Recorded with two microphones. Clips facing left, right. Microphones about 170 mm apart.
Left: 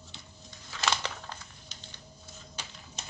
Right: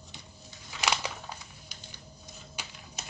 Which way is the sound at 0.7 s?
15° right (ahead or behind).